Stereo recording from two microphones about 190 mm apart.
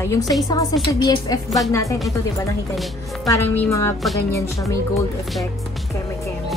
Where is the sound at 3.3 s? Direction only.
10° left (ahead or behind).